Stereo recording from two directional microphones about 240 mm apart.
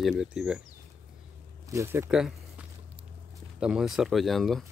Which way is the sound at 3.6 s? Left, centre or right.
Centre.